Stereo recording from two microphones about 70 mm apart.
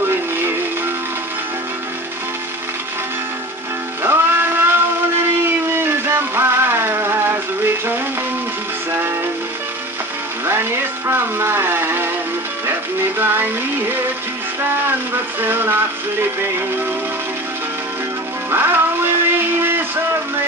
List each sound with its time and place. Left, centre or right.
0.1 s synthetic singing: right
4.0 s music: right
5.7 s music: right
10.4 s a sound: right
13.2 s music: right
15.4 s music: right
18.5 s music: right